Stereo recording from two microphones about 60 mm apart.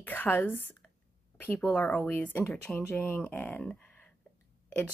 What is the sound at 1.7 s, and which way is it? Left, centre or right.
Speech, left.